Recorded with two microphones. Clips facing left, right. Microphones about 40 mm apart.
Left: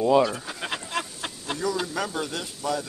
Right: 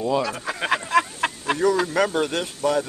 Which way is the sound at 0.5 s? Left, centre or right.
Right.